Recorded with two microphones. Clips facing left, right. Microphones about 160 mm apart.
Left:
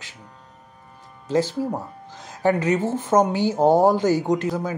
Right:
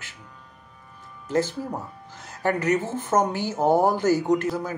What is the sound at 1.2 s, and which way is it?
Speech, 15° left (ahead or behind).